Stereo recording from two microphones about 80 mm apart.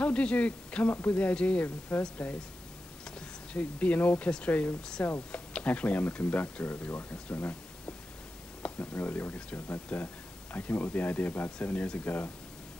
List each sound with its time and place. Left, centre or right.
0.0 s speech: centre